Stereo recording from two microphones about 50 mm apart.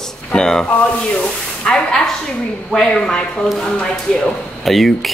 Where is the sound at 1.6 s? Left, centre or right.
Centre.